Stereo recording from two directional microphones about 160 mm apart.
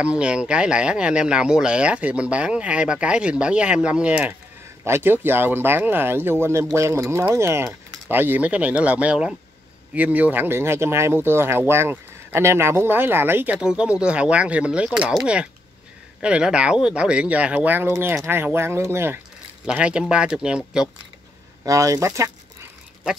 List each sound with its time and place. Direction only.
0.0 s speech: 5° right (ahead or behind)
21.6 s speech: 20° right (ahead or behind)